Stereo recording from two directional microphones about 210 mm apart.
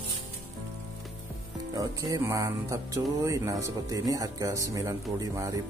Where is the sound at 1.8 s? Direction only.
15° right (ahead or behind).